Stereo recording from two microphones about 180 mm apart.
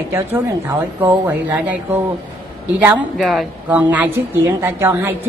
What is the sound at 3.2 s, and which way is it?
Speech, centre (ahead or behind).